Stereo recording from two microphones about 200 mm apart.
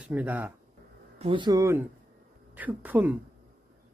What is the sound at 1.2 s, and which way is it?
Speech, 25° right (ahead or behind).